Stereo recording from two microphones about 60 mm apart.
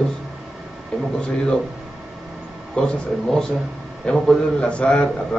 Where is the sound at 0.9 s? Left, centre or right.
Centre.